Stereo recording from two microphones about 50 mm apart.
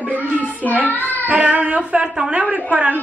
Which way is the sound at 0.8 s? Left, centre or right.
Left.